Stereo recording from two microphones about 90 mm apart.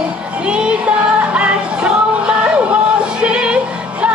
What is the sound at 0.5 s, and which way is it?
Music, 10° right (ahead or behind).